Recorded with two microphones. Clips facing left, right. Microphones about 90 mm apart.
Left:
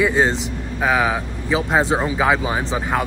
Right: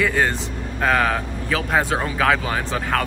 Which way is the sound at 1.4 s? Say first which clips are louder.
Left 3 dB; 20° left (ahead or behind).